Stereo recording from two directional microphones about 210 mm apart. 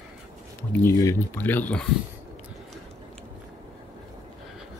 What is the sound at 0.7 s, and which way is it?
Speech, 10° left (ahead or behind).